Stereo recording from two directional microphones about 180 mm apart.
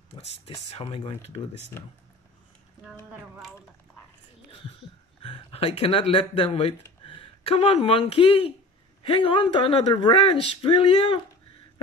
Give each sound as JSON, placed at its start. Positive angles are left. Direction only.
{"t": 0.7, "sound": "speech", "side_deg": 30}
{"t": 2.8, "sound": "speech", "side_deg": 0}
{"t": 4.5, "sound": "a sound", "side_deg": 30}
{"t": 5.2, "sound": "speech", "side_deg": 30}